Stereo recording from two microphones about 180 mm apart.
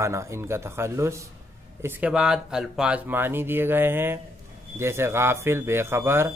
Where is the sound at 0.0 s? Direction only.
15° right (ahead or behind).